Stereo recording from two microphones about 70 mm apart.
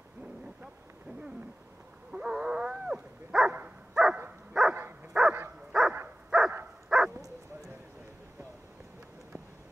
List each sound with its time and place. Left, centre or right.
2.0 s livestock: centre
3.9 s dog: centre
6.9 s bow-wow: centre